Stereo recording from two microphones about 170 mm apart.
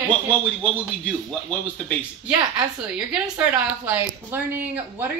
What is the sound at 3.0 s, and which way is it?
A woman's voice, 5° right (ahead or behind).